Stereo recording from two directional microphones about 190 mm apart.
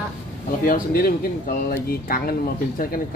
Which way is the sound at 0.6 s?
50° left (ahead or behind).